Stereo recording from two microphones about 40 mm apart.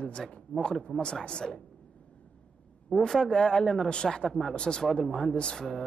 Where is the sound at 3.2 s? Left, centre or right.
Centre.